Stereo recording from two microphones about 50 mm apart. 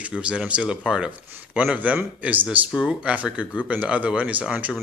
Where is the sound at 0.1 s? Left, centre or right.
Centre.